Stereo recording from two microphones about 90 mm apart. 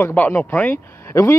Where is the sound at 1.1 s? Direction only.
35° left (ahead or behind).